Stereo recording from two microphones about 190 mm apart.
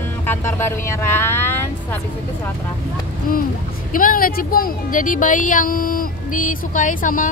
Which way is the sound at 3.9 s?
45° left (ahead or behind).